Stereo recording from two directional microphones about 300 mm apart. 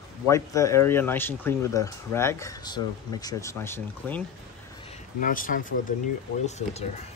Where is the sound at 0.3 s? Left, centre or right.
Centre.